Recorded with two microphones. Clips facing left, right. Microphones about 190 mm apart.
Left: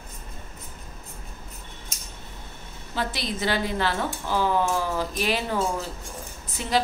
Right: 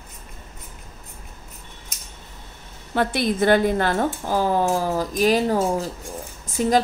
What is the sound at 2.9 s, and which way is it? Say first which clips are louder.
A woman's voice: right 8 dB; 55° right (ahead or behind).